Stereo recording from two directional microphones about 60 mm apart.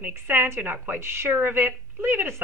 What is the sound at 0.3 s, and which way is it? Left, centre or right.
Speech, right.